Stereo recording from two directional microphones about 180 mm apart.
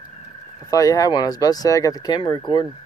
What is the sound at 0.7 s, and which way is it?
Speech, 20° left (ahead or behind).